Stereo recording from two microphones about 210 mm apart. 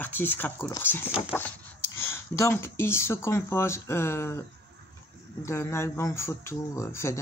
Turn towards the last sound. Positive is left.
turn(degrees=15)  # may be behind; listen again after turning